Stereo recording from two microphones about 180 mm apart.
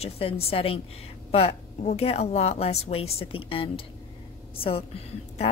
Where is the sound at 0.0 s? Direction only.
30° left (ahead or behind).